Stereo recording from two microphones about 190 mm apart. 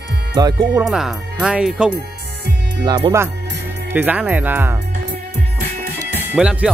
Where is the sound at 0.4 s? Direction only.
20° right (ahead or behind).